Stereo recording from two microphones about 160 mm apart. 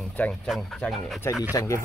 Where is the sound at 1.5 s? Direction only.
20° left (ahead or behind).